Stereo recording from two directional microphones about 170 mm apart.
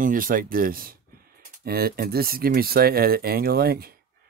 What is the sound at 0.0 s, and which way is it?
Speech, 55° right (ahead or behind).